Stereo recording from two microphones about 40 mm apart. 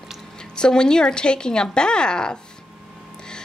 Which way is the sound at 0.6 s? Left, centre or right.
Centre.